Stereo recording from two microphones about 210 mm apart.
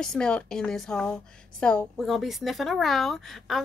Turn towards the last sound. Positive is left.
turn(degrees=0)  # may be behind; listen again after turning